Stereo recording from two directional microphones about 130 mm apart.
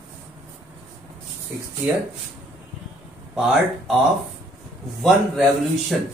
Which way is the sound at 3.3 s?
5° right (ahead or behind).